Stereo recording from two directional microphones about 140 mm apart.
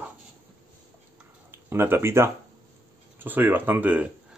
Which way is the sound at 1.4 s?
15° right (ahead or behind).